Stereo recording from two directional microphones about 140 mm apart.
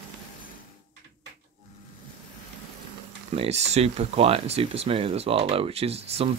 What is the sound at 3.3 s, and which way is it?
Speech, 50° right (ahead or behind).